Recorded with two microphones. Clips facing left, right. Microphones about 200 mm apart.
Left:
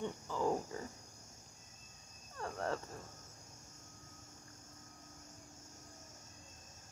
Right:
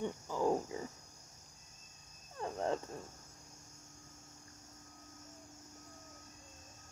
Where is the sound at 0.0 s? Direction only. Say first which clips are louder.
Right 2 dB; 15° right (ahead or behind).